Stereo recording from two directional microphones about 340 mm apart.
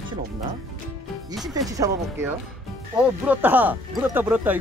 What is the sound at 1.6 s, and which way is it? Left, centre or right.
Speech, centre.